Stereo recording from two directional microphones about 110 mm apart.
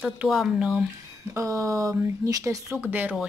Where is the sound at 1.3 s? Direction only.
30° right (ahead or behind).